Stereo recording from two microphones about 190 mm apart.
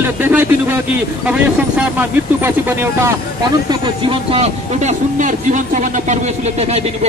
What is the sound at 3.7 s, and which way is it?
Speech, 30° right (ahead or behind).